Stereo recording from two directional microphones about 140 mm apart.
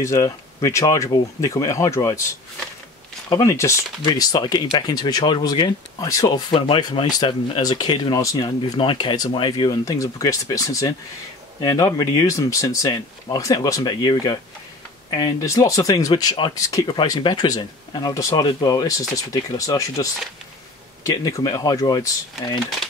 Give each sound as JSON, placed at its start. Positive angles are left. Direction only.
{"t": 0.0, "sound": "speech", "side_deg": 25}
{"t": 3.4, "sound": "speech", "side_deg": 20}
{"t": 6.2, "sound": "speech", "side_deg": 40}